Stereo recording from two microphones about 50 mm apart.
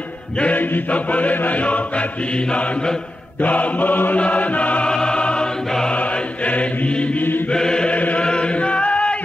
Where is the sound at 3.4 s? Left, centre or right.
Left.